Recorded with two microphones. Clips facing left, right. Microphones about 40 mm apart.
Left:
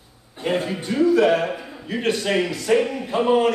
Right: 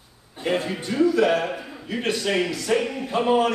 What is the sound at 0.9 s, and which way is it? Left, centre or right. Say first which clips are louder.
A man's voice: left 2 dB; centre.